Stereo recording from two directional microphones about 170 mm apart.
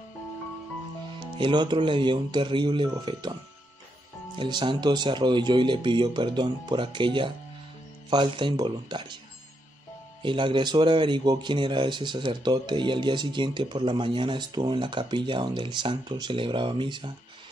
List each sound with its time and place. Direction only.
1.4 s speech: 25° right (ahead or behind)
4.4 s speech: 25° right (ahead or behind)
10.2 s speech: 30° right (ahead or behind)